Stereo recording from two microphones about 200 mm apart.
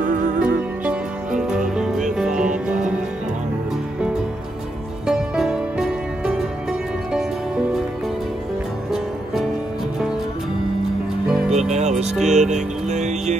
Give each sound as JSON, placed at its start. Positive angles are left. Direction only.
{"t": 0.0, "sound": "music", "side_deg": -40}
{"t": 0.4, "sound": "music", "side_deg": -5}
{"t": 5.0, "sound": "music", "side_deg": -5}
{"t": 11.5, "sound": "music", "side_deg": -35}